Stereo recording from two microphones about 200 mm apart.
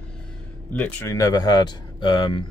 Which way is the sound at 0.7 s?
10° left (ahead or behind).